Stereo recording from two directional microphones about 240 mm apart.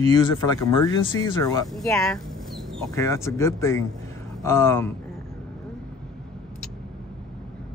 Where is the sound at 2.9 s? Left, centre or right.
Centre.